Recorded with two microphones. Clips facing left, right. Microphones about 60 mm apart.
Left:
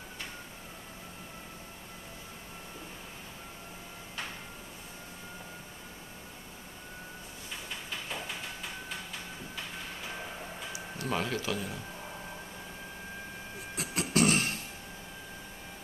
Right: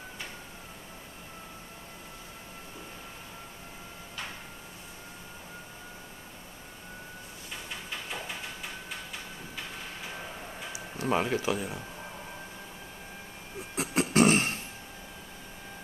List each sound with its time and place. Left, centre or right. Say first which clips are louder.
10.7 s speech: right 5 dB; right
13.7 s beatboxing: right 4 dB; right